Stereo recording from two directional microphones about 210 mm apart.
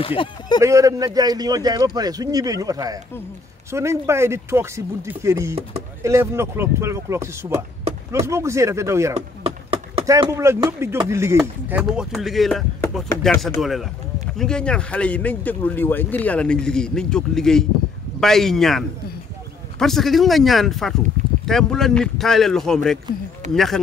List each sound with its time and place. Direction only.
0.0 s speech: 25° left (ahead or behind)
0.6 s speech: 15° right (ahead or behind)
9.4 s a sound: 25° right (ahead or behind)
10.0 s speech: 15° right (ahead or behind); by 23.8 s centre (ahead or behind)